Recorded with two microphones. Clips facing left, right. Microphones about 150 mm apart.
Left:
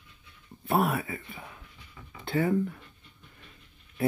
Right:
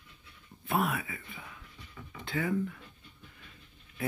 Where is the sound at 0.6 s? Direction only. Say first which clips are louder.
Left 4 dB; 35° left (ahead or behind).